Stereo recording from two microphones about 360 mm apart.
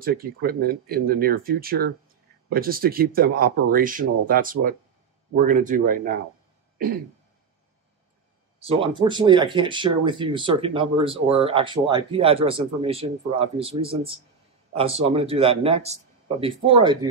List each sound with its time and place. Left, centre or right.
0.0 s speech: right
8.5 s speech: centre